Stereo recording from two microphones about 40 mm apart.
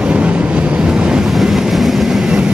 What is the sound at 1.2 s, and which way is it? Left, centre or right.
Vehicle, centre.